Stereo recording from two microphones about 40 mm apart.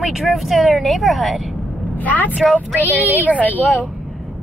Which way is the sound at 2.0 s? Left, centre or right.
Left.